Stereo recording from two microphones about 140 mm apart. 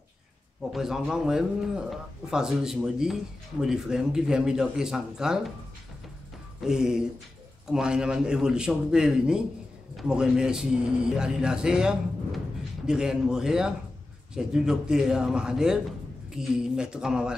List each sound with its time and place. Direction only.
0.6 s speech: 5° right (ahead or behind)
6.6 s speech: 5° right (ahead or behind)